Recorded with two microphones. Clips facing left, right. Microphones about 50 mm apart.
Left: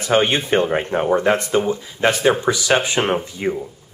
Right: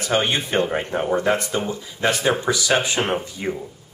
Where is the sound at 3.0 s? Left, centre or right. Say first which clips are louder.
Left 3 dB; centre.